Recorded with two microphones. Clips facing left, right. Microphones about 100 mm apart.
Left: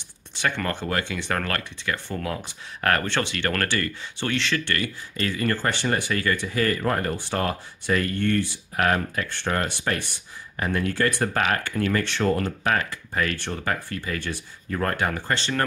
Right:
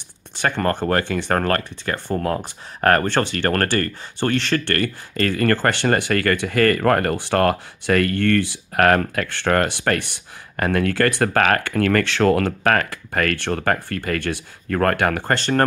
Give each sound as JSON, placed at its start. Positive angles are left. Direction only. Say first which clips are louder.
{"t": 0.4, "sound": "speech", "louder": "right 6 dB", "side_deg": -45}